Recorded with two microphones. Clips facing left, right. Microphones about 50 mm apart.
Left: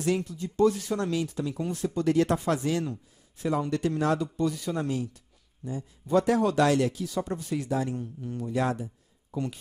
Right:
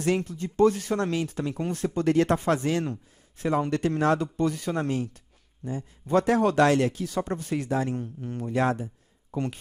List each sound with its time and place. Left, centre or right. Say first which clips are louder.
0.0 s speech: right 2 dB; right